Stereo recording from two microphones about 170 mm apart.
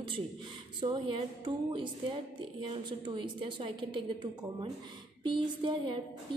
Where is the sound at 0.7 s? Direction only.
30° right (ahead or behind).